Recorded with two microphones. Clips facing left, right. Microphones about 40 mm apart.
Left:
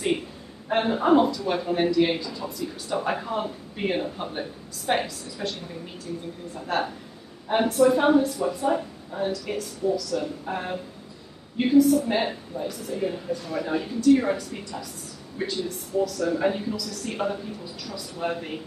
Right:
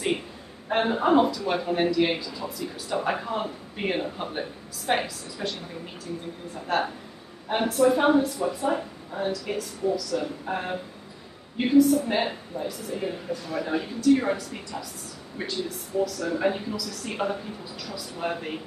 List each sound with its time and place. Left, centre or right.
0.7 s a man's voice: centre